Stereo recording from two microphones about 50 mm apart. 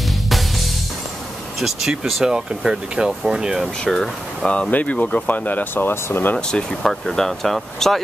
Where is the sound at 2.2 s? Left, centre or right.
Centre.